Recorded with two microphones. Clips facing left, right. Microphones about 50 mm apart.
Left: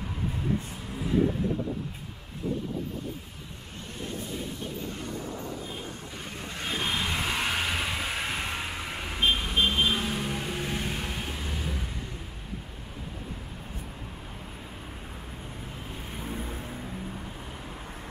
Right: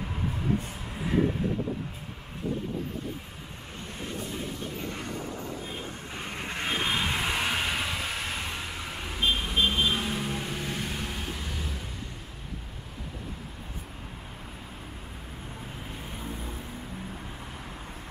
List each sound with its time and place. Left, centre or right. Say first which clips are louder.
6.4 s vehicle: right 3 dB; right
6.8 s vehicle: even; centre
16.1 s vehicle: left 2 dB; centre